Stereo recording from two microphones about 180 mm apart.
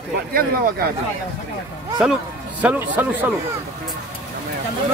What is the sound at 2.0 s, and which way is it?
Speech, 5° right (ahead or behind).